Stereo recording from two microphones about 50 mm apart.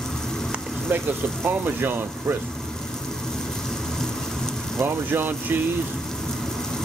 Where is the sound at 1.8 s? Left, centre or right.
Right.